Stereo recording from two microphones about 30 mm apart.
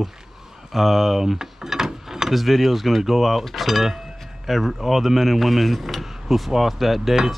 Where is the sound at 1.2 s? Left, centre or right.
Centre.